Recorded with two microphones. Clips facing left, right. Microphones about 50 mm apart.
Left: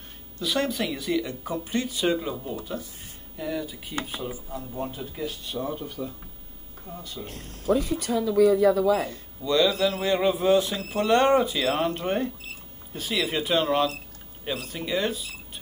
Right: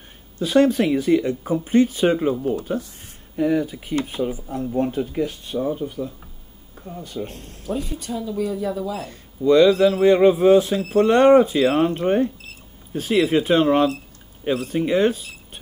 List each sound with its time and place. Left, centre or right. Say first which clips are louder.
0.4 s speech: right 10 dB; right
3.3 s speech: right 11 dB; right
5.7 s speech: right 7 dB; centre
7.2 s speech: right 10 dB; centre
7.7 s speech: left 3 dB; left
9.1 s speech: right 9 dB; right
11.9 s speech: right 7 dB; right
12.9 s speech: right 9 dB; right